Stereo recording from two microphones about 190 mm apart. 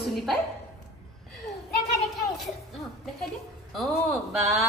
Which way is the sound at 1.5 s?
35° left (ahead or behind).